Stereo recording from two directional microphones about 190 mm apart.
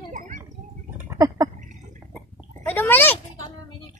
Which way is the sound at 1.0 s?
15° right (ahead or behind).